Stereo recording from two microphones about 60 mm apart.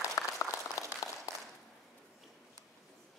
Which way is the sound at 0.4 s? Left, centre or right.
Left.